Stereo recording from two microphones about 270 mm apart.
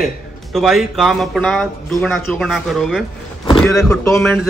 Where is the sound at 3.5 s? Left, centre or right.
Centre.